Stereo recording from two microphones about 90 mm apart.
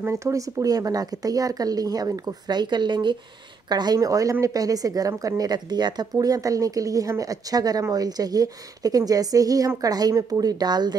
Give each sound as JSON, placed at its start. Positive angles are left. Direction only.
{"t": 0.0, "sound": "speech", "side_deg": -35}